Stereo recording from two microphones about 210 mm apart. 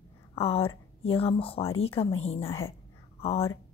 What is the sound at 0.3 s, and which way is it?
A woman's voice, 25° left (ahead or behind).